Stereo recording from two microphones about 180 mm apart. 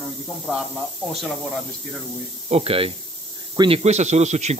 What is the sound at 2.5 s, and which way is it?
Speech, 35° right (ahead or behind).